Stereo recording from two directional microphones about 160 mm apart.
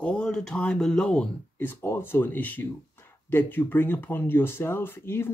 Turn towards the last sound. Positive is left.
turn(degrees=15)  # may be behind; listen again after turning